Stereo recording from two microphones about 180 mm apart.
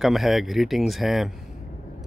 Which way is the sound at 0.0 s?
Centre (ahead or behind).